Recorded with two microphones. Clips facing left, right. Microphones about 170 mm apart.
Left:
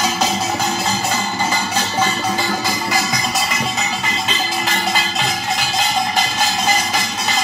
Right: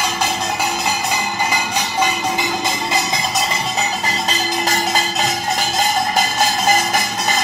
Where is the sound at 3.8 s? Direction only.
35° right (ahead or behind).